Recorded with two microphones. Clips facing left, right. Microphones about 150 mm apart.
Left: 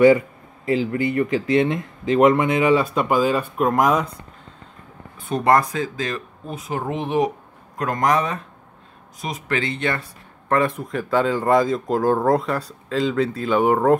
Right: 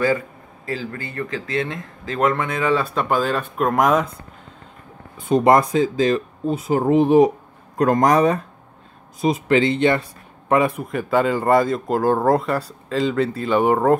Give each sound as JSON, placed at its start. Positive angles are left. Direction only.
{"t": 0.7, "sound": "speech", "side_deg": 20}
{"t": 2.9, "sound": "speech", "side_deg": 5}
{"t": 5.1, "sound": "speech", "side_deg": -20}
{"t": 9.2, "sound": "speech", "side_deg": -25}
{"t": 10.5, "sound": "speech", "side_deg": -10}